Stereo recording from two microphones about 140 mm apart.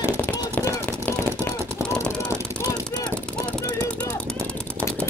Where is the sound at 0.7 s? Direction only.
15° left (ahead or behind).